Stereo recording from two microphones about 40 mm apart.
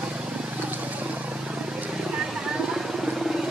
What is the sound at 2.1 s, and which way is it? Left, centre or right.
Vehicle, right.